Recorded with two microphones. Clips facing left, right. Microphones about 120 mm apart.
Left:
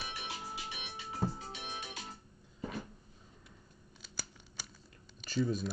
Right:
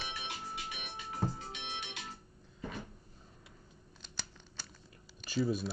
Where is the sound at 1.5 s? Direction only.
40° left (ahead or behind).